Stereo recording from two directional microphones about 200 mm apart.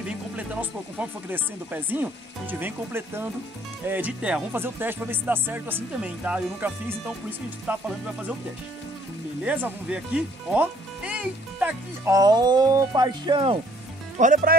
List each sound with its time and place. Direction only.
0.4 s speech: 10° right (ahead or behind)
9.4 s speech: 5° right (ahead or behind)
12.2 s speech: 20° right (ahead or behind)
14.1 s speech: 40° right (ahead or behind)